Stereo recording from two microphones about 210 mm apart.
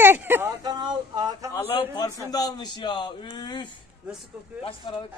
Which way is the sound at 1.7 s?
20° left (ahead or behind).